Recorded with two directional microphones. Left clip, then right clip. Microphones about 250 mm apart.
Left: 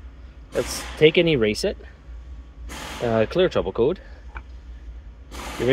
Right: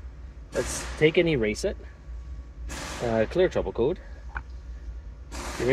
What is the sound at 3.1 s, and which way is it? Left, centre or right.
Speech, centre.